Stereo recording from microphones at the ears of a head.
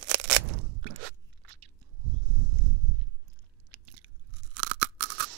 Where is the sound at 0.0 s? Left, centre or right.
Right.